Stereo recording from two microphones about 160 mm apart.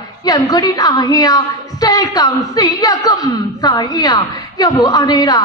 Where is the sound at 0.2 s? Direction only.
25° left (ahead or behind).